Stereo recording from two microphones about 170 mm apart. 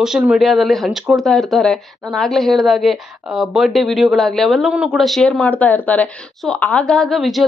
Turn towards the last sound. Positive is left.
turn(degrees=0)  # may be behind; listen again after turning